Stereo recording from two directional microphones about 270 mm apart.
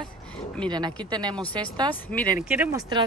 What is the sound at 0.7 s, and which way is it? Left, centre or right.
Speech, centre.